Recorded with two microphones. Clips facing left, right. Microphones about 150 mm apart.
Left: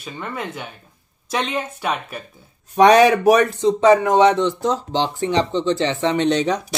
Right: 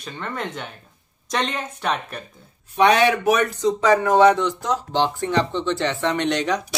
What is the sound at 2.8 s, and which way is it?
Speech, 40° left (ahead or behind).